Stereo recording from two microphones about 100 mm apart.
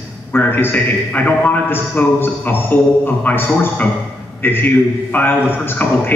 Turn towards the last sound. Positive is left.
turn(degrees=20)  # may be behind; listen again after turning